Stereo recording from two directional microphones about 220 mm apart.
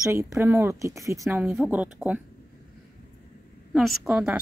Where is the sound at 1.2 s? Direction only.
5° right (ahead or behind).